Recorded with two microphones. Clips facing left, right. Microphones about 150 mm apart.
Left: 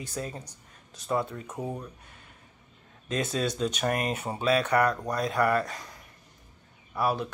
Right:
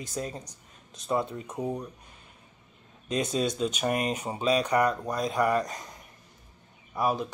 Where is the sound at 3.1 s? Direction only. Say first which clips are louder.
Right 1 dB; 15° right (ahead or behind).